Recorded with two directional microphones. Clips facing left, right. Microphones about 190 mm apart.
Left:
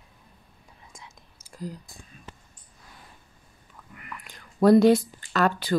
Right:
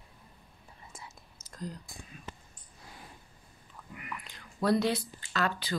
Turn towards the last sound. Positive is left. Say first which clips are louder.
# left 8 dB
turn(degrees=50)  # may be behind; listen again after turning